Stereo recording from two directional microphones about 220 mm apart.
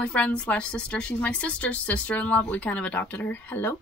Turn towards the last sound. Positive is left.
turn(degrees=10)  # may be behind; listen again after turning